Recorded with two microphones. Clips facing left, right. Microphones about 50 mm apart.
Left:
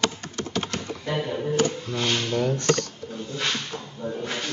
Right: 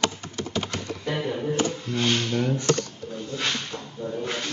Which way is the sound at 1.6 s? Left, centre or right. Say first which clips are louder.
Left 1 dB; centre.